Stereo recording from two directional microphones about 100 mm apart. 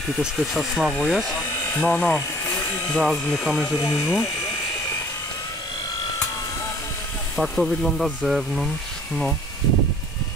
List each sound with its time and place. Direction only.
0.2 s speech: 5° right (ahead or behind)
1.7 s speech: 15° left (ahead or behind)
2.9 s speech: centre (ahead or behind)
7.3 s speech: centre (ahead or behind)